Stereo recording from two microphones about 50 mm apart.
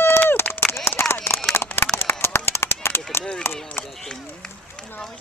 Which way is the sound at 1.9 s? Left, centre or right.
Left.